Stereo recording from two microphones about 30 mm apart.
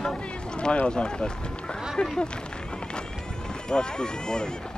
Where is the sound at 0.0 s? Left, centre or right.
Left.